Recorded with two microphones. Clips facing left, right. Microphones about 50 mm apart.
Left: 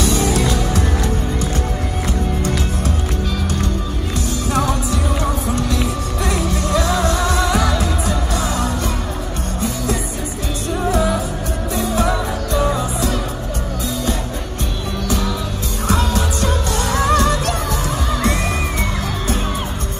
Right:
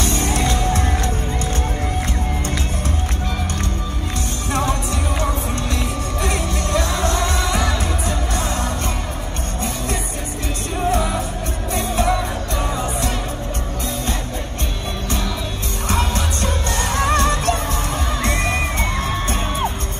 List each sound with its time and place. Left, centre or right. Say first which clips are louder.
0.0 s music: left 3 dB; right
4.5 s music: left 2 dB; right
6.2 s music: left 3 dB; right
11.7 s music: left 2 dB; right
15.9 s music: left 3 dB; right